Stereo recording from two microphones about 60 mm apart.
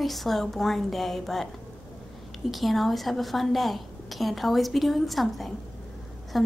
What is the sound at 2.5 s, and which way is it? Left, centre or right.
A woman's voice, centre.